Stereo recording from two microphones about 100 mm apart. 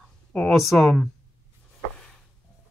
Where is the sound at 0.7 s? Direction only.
5° left (ahead or behind).